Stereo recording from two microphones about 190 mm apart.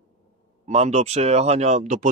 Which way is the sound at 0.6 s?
35° right (ahead or behind).